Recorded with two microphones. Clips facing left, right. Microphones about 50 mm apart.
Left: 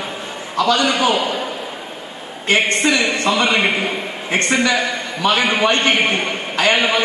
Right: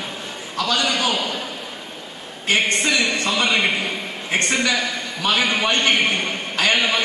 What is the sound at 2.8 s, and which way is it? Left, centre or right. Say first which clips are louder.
A man's voice: left 4 dB; centre.